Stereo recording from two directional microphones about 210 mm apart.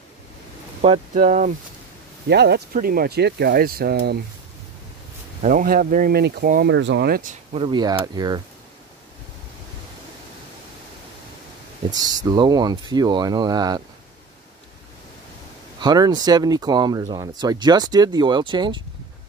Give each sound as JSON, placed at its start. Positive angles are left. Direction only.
{"t": 0.8, "sound": "speech", "side_deg": -35}
{"t": 2.2, "sound": "speech", "side_deg": -55}
{"t": 5.4, "sound": "speech", "side_deg": -40}
{"t": 6.7, "sound": "speech", "side_deg": -55}
{"t": 7.5, "sound": "speech", "side_deg": -25}
{"t": 11.9, "sound": "speech", "side_deg": -20}
{"t": 15.8, "sound": "speech", "side_deg": -20}